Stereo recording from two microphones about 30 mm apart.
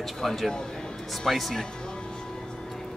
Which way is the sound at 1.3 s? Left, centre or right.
Centre.